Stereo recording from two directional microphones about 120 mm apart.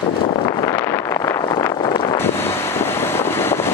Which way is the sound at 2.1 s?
20° left (ahead or behind).